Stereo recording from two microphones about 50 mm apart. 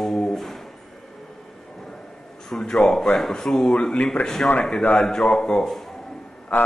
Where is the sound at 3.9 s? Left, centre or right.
Left.